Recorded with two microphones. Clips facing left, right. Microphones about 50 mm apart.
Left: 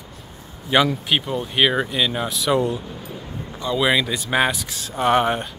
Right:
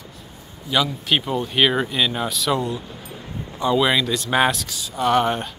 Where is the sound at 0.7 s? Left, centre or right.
Left.